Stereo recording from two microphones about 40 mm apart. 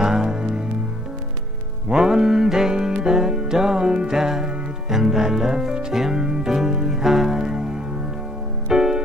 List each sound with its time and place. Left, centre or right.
0.0 s music: centre
2.0 s music: centre
8.6 s music: centre